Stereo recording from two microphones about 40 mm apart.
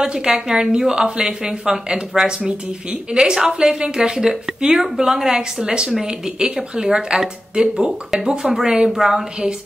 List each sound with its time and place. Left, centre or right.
0.0 s a woman's voice: centre